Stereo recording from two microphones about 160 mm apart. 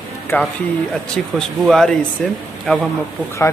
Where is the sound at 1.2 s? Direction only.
5° left (ahead or behind).